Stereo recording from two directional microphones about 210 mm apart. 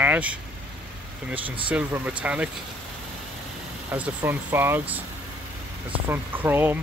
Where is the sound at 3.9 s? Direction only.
10° right (ahead or behind).